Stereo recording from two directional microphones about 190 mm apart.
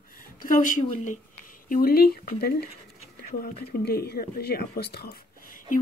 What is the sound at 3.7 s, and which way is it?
A woman's voice, 55° left (ahead or behind).